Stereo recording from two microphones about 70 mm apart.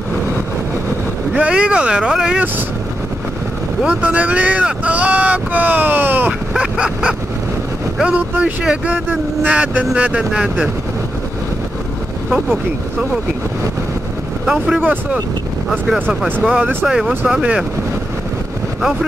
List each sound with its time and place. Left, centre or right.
1.3 s speech: centre
3.8 s speech: centre
6.5 s a sound: centre
8.0 s speech: centre
14.4 s speech: centre
14.8 s speech: right
15.9 s speech: centre
18.8 s speech: centre